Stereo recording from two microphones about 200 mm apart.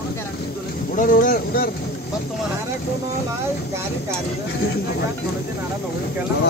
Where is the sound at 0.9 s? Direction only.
45° left (ahead or behind).